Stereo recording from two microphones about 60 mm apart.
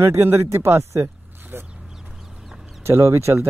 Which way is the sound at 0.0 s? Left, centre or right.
Right.